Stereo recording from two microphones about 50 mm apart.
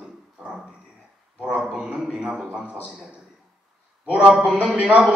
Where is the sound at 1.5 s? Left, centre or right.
Centre.